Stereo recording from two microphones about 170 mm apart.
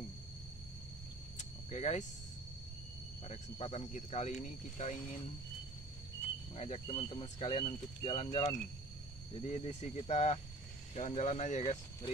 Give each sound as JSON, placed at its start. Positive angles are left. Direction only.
{"t": 1.4, "sound": "vehicle", "side_deg": 40}
{"t": 3.3, "sound": "speech", "side_deg": 35}
{"t": 6.5, "sound": "speech", "side_deg": 40}